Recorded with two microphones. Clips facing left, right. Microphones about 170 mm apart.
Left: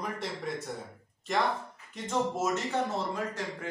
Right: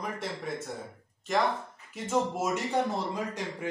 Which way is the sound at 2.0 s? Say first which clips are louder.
Right 1 dB; 10° right (ahead or behind).